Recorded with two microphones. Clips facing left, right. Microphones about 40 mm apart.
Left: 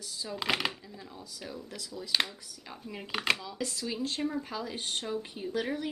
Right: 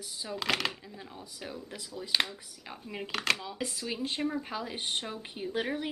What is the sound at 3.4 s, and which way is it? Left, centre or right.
Speech, centre.